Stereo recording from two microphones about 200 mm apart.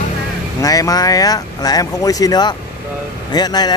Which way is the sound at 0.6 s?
15° left (ahead or behind).